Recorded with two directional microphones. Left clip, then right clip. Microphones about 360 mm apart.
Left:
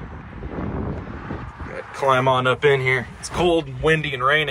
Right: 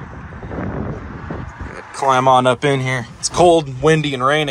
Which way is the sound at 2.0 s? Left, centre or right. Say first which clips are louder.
Right 5 dB; centre.